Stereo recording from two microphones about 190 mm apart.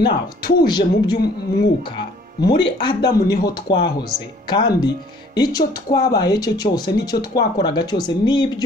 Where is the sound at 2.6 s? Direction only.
25° left (ahead or behind).